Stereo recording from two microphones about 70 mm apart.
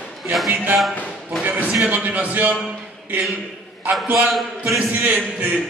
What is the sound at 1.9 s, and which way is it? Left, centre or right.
Speech, right.